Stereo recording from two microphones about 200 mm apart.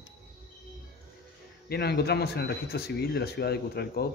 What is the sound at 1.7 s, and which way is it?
Speech, 55° left (ahead or behind).